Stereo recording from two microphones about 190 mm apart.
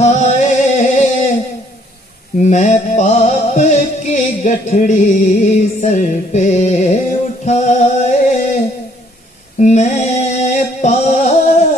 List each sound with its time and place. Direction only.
0.0 s singing: 40° left (ahead or behind)
2.4 s music: 40° left (ahead or behind)
9.6 s a sound: 40° left (ahead or behind)